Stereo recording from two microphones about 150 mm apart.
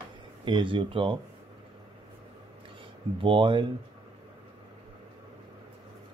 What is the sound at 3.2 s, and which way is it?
Speech, 35° right (ahead or behind).